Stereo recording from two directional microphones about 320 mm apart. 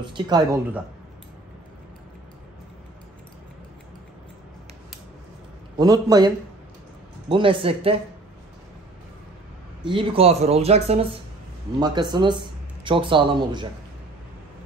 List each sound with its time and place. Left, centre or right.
0.0 s speech: centre
5.8 s speech: centre
9.8 s speech: centre